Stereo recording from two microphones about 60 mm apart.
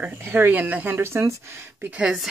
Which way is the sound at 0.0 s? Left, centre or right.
Right.